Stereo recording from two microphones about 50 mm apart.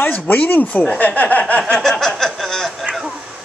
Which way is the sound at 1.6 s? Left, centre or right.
Centre.